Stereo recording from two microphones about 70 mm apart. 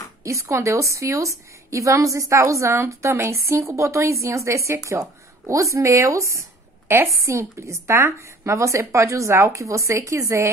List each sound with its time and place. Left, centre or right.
0.2 s a woman's voice: right